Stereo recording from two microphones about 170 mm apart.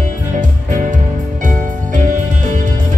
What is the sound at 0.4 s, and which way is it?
Music, 50° right (ahead or behind).